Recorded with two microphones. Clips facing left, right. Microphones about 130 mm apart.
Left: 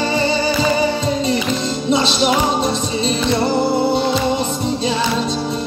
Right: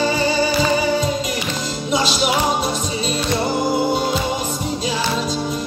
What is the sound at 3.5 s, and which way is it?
Music, 30° left (ahead or behind).